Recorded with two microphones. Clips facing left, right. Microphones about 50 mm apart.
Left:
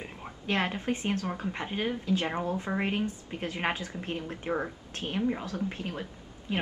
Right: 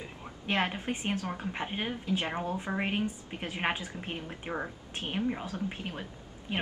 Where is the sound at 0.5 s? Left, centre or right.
Centre.